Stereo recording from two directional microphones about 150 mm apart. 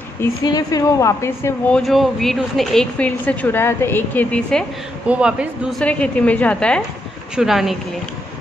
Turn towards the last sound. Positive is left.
turn(degrees=0)  # may be behind; listen again after turning